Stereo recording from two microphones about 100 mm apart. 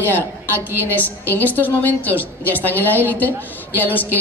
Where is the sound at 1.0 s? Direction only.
15° left (ahead or behind).